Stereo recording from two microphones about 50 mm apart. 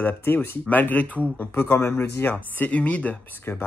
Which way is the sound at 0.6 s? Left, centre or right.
Left.